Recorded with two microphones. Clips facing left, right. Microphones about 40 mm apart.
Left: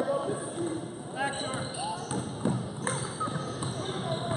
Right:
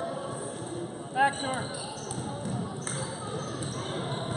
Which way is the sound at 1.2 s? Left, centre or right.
Right.